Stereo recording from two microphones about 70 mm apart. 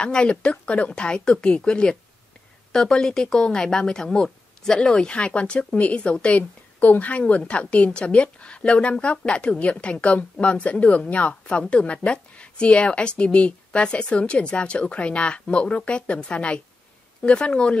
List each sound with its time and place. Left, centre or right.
0.0 s speech: centre